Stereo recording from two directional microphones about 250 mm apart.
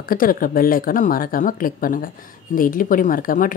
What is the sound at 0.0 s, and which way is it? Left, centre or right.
Speech, left.